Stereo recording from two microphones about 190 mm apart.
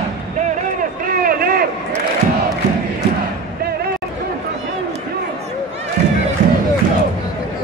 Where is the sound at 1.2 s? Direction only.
50° right (ahead or behind).